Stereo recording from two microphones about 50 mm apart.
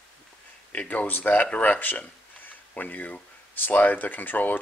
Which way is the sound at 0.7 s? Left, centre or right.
Left.